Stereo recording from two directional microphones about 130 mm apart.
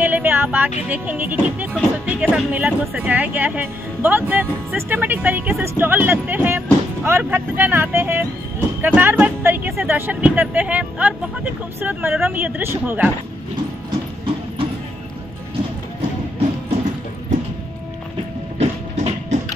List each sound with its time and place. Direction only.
0.0 s vehicle: 15° right (ahead or behind)
0.8 s speech: 10° right (ahead or behind)
13.8 s music: 40° right (ahead or behind)
18.6 s a sound: 60° right (ahead or behind)